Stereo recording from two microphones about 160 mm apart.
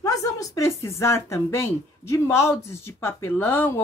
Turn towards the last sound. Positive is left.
turn(degrees=15)  # may be behind; listen again after turning